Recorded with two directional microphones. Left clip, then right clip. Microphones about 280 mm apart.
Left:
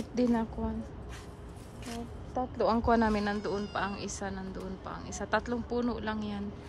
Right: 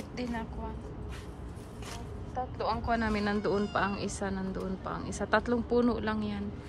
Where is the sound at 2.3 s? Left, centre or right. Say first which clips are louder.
Left 3 dB; left.